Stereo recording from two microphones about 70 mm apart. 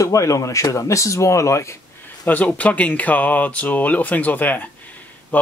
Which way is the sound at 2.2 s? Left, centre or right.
Left.